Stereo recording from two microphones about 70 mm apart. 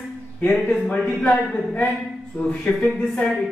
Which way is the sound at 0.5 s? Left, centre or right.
Centre.